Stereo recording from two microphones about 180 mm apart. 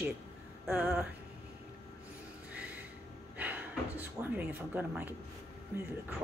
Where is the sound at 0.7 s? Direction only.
5° right (ahead or behind).